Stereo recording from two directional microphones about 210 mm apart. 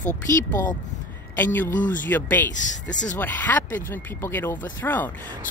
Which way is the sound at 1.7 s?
40° left (ahead or behind).